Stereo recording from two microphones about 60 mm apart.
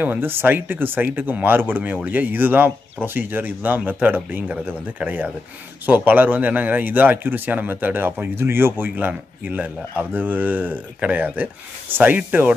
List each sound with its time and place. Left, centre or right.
0.0 s a man's voice: right